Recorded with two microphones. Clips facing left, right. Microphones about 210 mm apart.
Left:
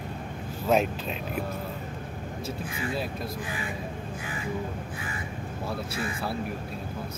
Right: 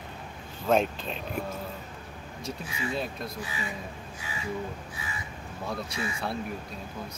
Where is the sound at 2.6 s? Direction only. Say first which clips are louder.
Even; 50° left (ahead or behind).